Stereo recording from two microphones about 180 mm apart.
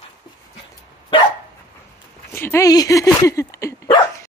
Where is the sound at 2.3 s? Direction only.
15° left (ahead or behind).